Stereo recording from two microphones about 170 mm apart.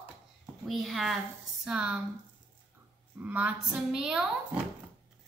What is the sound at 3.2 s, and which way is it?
Speech, 10° right (ahead or behind).